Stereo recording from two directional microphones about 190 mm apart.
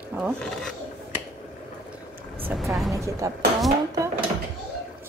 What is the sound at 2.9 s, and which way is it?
Speech, 15° right (ahead or behind).